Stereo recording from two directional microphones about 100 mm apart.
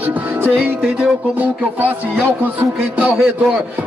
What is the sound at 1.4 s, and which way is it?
Speech, 15° right (ahead or behind).